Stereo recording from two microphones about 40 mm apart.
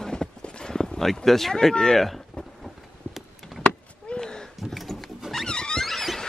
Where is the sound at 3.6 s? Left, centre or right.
Left.